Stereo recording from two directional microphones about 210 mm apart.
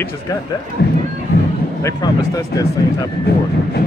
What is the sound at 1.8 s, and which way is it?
Speech, 15° left (ahead or behind).